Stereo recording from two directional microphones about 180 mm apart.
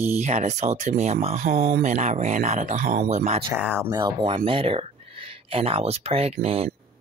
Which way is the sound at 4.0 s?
25° right (ahead or behind).